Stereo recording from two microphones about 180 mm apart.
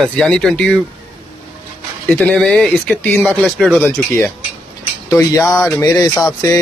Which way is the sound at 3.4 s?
Centre (ahead or behind).